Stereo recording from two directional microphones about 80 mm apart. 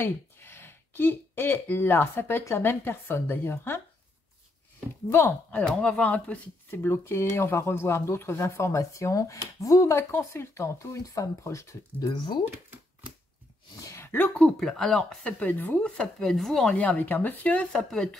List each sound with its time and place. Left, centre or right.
0.0 s speech: left
5.1 s speech: left
5.6 s speech: centre
6.8 s speech: left
12.0 s speech: left
13.9 s a sound: left
14.4 s speech: centre
15.3 s speech: left; by 16.7 s centre
16.7 s speech: centre